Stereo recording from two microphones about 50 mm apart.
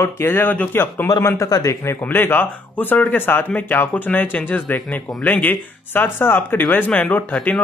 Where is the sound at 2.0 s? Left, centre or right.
Left.